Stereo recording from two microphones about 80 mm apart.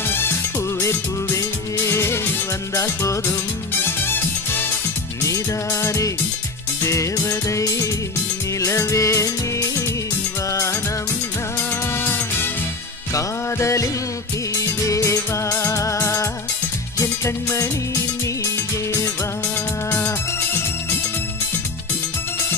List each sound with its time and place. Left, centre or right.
0.7 s music: left
5.2 s music: left
12.0 s music: left
13.1 s music: left